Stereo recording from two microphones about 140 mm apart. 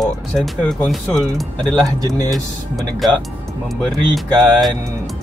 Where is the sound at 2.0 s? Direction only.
25° right (ahead or behind).